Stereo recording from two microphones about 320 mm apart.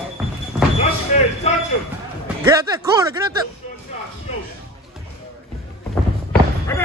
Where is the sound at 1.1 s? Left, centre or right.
Left.